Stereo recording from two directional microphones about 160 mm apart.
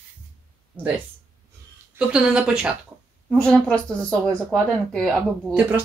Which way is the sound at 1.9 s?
5° right (ahead or behind).